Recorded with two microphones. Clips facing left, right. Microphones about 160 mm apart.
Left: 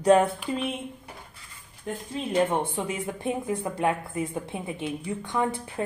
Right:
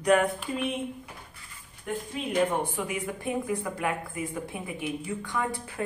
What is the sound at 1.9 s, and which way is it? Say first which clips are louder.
Speech: left 1 dB; 25° left (ahead or behind).